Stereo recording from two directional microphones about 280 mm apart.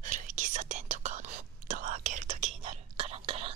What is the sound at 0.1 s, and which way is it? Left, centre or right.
Whispering, right.